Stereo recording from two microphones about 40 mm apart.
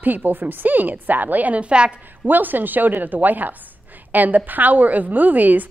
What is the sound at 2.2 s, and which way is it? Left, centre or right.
A woman's voice, right.